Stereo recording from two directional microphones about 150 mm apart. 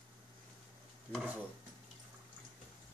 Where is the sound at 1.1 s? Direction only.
5° left (ahead or behind).